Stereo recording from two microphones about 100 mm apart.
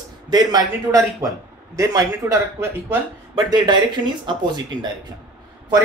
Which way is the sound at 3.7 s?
50° right (ahead or behind).